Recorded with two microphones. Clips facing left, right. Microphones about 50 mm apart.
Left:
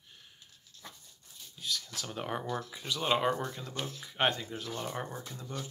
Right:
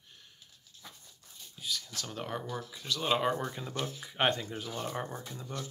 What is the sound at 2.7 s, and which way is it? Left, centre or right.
Speech, centre.